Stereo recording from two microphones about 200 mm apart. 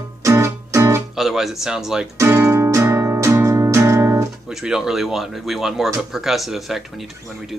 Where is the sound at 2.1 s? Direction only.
15° right (ahead or behind).